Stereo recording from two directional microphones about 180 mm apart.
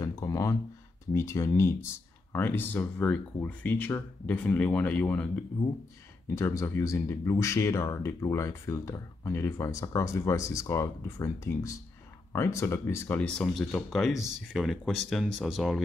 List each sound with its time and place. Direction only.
0.0 s a sound: 20° left (ahead or behind)
1.1 s speech: 15° left (ahead or behind)
6.3 s speech: 15° left (ahead or behind); by 15.8 s centre (ahead or behind)